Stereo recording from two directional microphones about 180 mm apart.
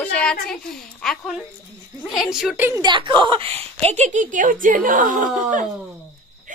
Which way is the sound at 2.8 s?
25° right (ahead or behind).